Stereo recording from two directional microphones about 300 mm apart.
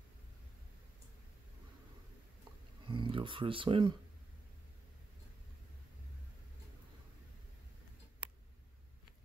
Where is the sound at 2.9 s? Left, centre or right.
Centre.